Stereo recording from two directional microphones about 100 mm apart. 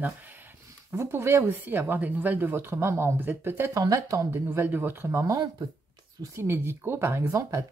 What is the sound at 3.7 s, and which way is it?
Speech, 35° right (ahead or behind).